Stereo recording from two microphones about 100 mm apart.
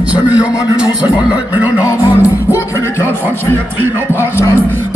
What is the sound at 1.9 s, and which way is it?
Music, 20° right (ahead or behind).